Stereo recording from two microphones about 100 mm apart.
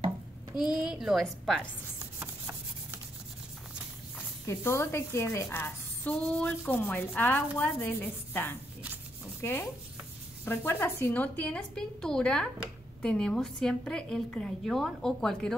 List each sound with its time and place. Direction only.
0.6 s a woman's voice: 5° right (ahead or behind)
2.1 s rub: 20° right (ahead or behind)
4.5 s a woman's voice: 25° left (ahead or behind); by 15.5 s 5° left (ahead or behind)